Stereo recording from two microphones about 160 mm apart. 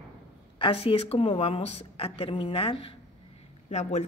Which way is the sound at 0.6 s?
35° left (ahead or behind).